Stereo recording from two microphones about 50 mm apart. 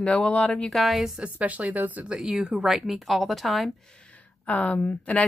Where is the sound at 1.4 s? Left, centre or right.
Right.